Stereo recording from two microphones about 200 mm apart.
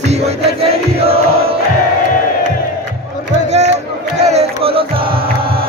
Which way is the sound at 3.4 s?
35° right (ahead or behind).